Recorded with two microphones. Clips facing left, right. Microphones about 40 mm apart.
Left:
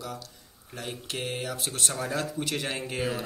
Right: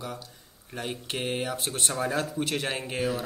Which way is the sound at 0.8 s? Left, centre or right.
Centre.